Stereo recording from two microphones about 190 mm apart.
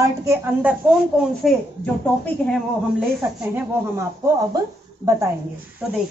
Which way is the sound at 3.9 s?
15° right (ahead or behind).